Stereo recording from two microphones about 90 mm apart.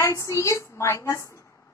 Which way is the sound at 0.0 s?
35° left (ahead or behind).